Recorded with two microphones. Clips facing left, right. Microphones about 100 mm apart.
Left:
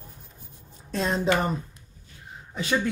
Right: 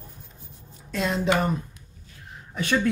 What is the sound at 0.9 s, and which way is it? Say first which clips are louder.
Speech: even; 35° left (ahead or behind).